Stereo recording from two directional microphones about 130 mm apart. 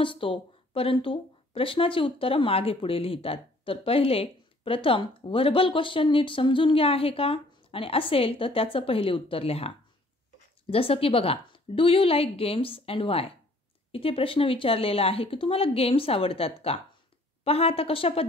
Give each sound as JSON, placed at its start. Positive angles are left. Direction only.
{"t": 0.0, "sound": "speech", "side_deg": 40}
{"t": 10.7, "sound": "speech", "side_deg": 45}